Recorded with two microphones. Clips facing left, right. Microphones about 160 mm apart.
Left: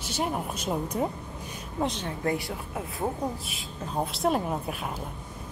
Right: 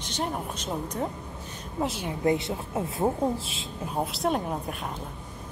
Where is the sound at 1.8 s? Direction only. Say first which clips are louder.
Even; 5° right (ahead or behind).